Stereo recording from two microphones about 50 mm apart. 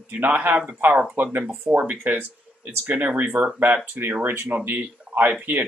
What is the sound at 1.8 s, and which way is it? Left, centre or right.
Speech, right.